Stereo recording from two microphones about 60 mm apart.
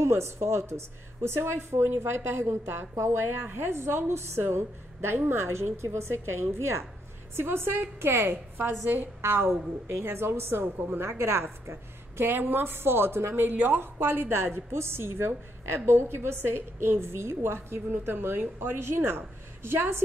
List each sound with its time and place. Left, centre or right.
0.0 s a woman's voice: right